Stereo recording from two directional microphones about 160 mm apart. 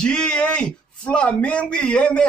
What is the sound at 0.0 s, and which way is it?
A man's voice, 5° left (ahead or behind).